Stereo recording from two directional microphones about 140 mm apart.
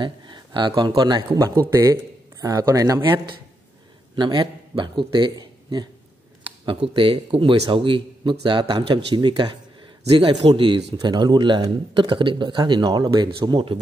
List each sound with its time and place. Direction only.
0.0 s a man's voice: 35° right (ahead or behind)